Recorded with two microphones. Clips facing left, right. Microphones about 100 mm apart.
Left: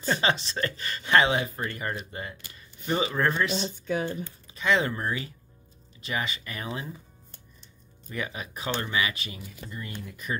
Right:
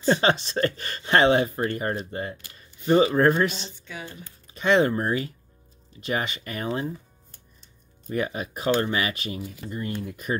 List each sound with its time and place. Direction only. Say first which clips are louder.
0.0 s speech: right 5 dB; 45° right (ahead or behind)
3.5 s speech: left 10 dB; 50° left (ahead or behind)
4.6 s speech: right 5 dB; 45° right (ahead or behind)
8.1 s speech: right 7 dB; 40° right (ahead or behind)